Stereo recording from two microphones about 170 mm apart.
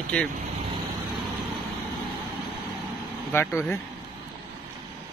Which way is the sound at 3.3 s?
15° left (ahead or behind).